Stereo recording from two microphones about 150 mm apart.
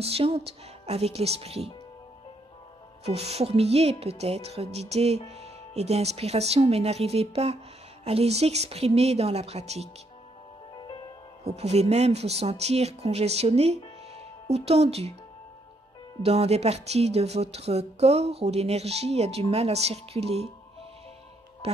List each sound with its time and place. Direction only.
0.0 s speech: 40° right (ahead or behind)
3.1 s speech: 45° right (ahead or behind)
11.4 s speech: 45° right (ahead or behind)
16.3 s speech: 45° right (ahead or behind)